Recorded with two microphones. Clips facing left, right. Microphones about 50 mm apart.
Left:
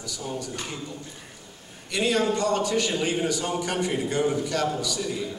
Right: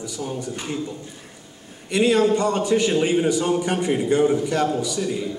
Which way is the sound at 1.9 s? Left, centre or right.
Right.